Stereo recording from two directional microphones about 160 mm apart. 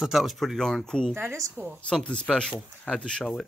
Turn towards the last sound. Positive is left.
turn(degrees=5)  # may be behind; listen again after turning